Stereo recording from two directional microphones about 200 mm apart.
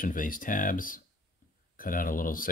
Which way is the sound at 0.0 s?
40° left (ahead or behind).